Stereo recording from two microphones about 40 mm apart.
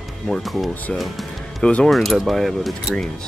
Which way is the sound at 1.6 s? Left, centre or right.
Left.